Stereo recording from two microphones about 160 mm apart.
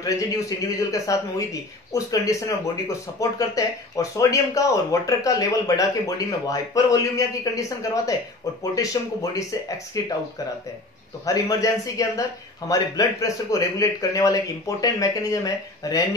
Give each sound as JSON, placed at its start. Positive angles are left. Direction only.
{"t": 0.0, "sound": "speech", "side_deg": 20}
{"t": 11.2, "sound": "speech", "side_deg": 20}